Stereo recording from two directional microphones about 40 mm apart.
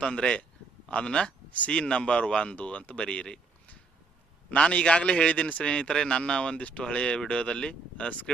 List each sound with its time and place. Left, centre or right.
0.0 s a man's voice: left
3.0 s a man's voice: left
4.6 s a man's voice: left